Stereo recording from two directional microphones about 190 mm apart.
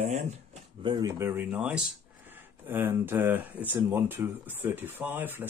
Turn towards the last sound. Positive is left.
turn(degrees=-10)  # may be behind; listen again after turning